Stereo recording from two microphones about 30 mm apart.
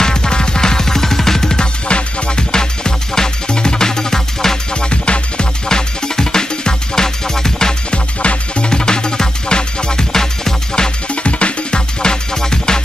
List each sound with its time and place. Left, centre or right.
0.0 s music: left
1.9 s music: left; by 4.6 s centre
4.8 s music: left
5.7 s music: left
7.9 s music: left
10.1 s music: centre
11.2 s music: left
12.0 s music: left